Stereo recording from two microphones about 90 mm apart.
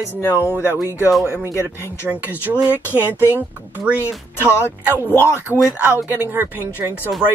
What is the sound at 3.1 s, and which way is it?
Speech, 25° left (ahead or behind).